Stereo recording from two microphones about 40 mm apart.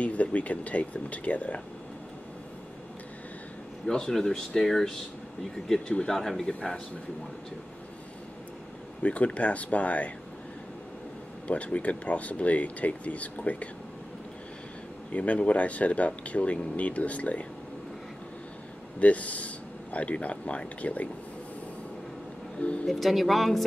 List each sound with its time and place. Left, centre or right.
0.0 s speech: left
3.9 s speech: left
9.0 s speech: left
11.4 s speech: left
15.1 s speech: left
18.9 s a man's voice: left
22.8 s speech: centre